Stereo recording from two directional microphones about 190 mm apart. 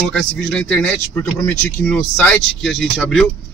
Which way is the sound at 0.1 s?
5° left (ahead or behind).